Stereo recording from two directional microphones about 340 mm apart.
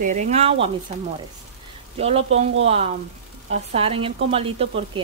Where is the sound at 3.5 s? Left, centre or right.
Centre.